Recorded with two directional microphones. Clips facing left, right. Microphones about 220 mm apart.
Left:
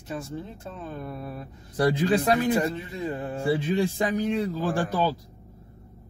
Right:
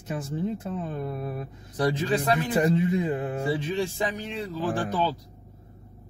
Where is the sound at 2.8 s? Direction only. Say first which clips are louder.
Right 6 dB; 20° right (ahead or behind).